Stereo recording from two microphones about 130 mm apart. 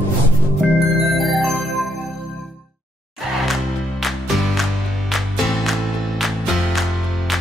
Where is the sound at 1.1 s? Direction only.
Centre (ahead or behind).